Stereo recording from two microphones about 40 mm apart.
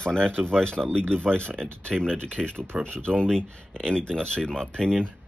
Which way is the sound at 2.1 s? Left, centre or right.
Left.